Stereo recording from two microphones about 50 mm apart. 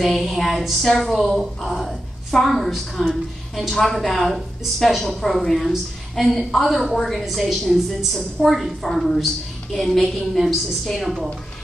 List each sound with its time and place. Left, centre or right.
0.0 s a woman's voice: centre
9.7 s a woman's voice: centre